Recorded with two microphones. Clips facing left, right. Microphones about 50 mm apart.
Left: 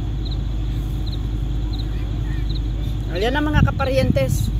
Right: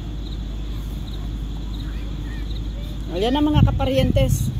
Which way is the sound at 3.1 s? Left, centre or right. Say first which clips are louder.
Right 1 dB; left.